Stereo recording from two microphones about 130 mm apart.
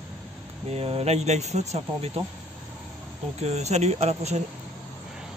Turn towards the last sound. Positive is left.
turn(degrees=-55)  # may be behind; listen again after turning